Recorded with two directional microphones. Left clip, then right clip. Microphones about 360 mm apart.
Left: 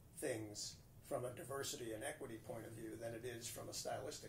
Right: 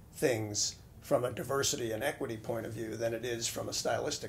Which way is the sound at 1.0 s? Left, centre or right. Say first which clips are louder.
Right 14 dB; right.